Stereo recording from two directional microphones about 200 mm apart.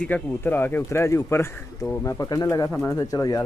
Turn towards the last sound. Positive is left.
turn(degrees=15)  # may be behind; listen again after turning